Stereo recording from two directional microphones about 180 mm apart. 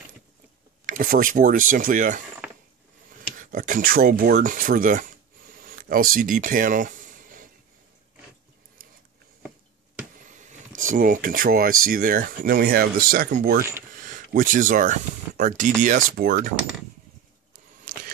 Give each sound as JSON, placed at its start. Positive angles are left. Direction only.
{"t": 0.8, "sound": "speech", "side_deg": -50}
{"t": 3.3, "sound": "speech", "side_deg": -50}
{"t": 5.5, "sound": "a sound", "side_deg": -50}
{"t": 10.2, "sound": "vehicle", "side_deg": -45}
{"t": 10.9, "sound": "speech", "side_deg": -50}
{"t": 17.9, "sound": "vehicle", "side_deg": -50}